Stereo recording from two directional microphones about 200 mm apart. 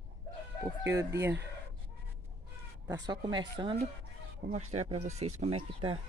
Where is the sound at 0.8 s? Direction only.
15° right (ahead or behind).